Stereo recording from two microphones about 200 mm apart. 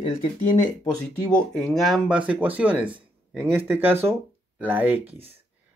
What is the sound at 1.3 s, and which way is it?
Speech, 5° left (ahead or behind).